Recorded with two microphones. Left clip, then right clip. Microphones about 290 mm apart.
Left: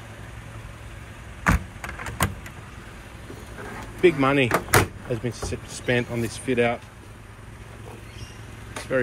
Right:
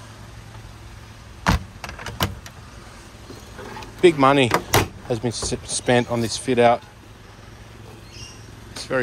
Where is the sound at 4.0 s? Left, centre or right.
Centre.